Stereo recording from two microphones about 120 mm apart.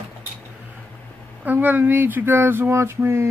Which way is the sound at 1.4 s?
15° right (ahead or behind).